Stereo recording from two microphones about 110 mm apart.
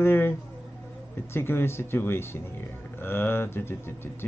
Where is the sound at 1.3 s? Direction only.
20° left (ahead or behind).